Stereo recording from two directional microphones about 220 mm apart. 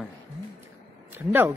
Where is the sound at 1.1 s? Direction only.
10° right (ahead or behind).